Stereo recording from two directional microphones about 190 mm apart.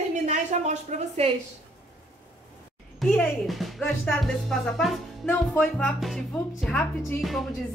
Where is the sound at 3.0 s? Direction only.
Centre (ahead or behind).